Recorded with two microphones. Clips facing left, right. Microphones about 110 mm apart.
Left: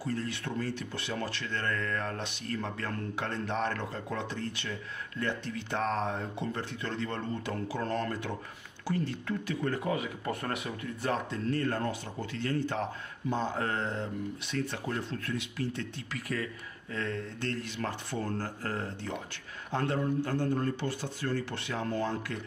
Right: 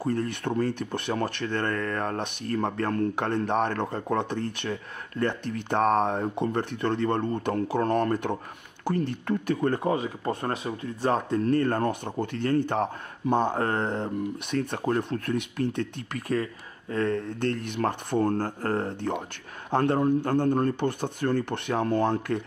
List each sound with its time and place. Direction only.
0.0 s speech: 55° right (ahead or behind); by 11.1 s 30° right (ahead or behind)
11.1 s speech: 50° right (ahead or behind)